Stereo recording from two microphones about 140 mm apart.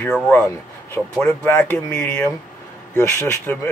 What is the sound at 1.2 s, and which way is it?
Speech, 15° left (ahead or behind).